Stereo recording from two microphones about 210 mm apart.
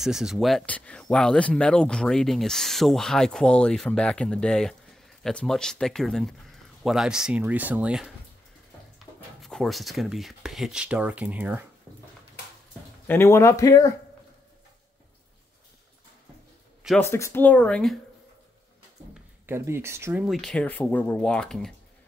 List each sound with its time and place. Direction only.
0.0 s speech: centre (ahead or behind)
9.4 s speech: centre (ahead or behind)
13.0 s speech: 10° left (ahead or behind)
17.0 s speech: 10° left (ahead or behind)
19.4 s speech: 10° right (ahead or behind)
20.2 s speech: centre (ahead or behind)